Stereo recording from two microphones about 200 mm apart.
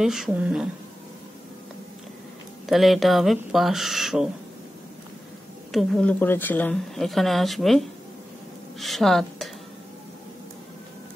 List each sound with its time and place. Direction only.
0.0 s a woman's voice: centre (ahead or behind)
2.7 s a woman's voice: centre (ahead or behind)
5.7 s a woman's voice: 5° left (ahead or behind)